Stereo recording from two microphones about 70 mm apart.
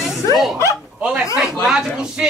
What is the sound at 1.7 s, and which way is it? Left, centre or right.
Speech, centre.